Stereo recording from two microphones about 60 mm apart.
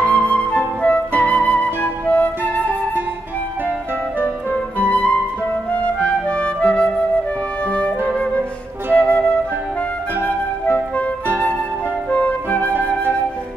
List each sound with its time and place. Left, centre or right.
0.0 s flute: right
0.8 s flute: centre
4.8 s flute: centre
5.7 s music: left
7.6 s flute: centre
8.9 s flute: left
10.2 s music: left
12.1 s flute: left
12.7 s flute: right